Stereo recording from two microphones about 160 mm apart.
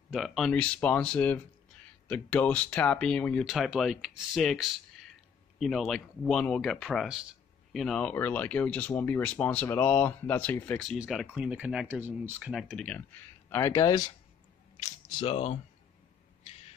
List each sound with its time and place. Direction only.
0.1 s speech: centre (ahead or behind)
13.5 s speech: 15° left (ahead or behind)
15.2 s speech: 40° left (ahead or behind)